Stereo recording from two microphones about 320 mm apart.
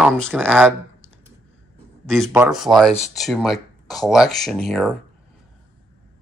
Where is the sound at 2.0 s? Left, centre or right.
Centre.